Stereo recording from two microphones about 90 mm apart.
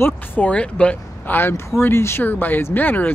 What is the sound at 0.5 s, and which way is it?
Speech, 10° left (ahead or behind).